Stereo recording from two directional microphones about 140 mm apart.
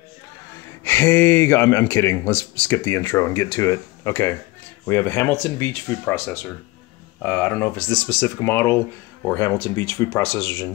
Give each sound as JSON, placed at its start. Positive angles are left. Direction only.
{"t": 0.8, "sound": "speech", "side_deg": 15}